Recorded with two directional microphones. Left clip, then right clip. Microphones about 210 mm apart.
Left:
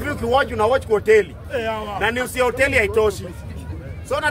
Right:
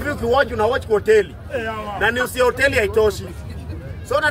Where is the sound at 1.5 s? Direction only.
50° left (ahead or behind).